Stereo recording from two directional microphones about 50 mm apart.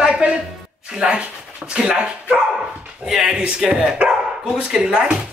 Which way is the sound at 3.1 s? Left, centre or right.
Centre.